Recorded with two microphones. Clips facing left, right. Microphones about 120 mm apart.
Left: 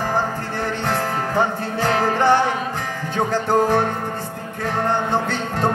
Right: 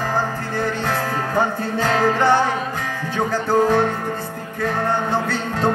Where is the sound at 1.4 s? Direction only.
20° left (ahead or behind).